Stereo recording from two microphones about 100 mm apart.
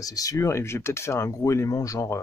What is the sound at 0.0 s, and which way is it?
Speech, 35° left (ahead or behind).